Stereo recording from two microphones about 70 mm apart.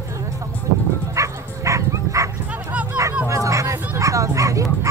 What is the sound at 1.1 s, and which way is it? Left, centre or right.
Bow-wow, right.